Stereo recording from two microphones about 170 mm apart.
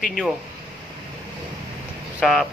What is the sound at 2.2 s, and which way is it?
Speech, 5° left (ahead or behind).